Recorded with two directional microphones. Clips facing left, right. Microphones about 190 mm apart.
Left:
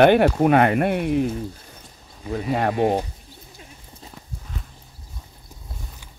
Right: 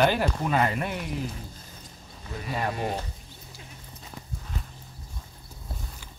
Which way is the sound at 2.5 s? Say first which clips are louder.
Left 9 dB; 65° left (ahead or behind).